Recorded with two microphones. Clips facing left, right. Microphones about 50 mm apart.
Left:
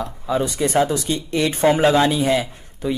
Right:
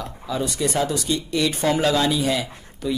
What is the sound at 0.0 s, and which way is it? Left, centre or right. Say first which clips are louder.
Speech: left 5 dB; left.